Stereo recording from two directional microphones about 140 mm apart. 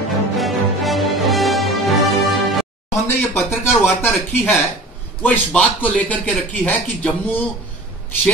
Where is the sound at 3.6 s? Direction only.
15° left (ahead or behind).